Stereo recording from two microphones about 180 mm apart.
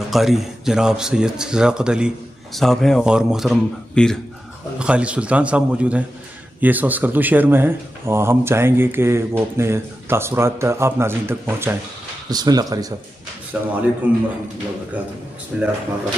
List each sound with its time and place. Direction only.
0.1 s speech: centre (ahead or behind); by 12.8 s 20° right (ahead or behind)
13.5 s speech: 10° right (ahead or behind)
15.5 s speech: 5° right (ahead or behind)